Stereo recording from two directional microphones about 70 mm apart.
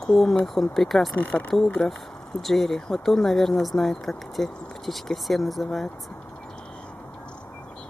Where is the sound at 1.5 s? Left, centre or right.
Centre.